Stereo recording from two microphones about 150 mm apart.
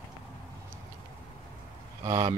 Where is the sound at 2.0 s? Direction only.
25° right (ahead or behind).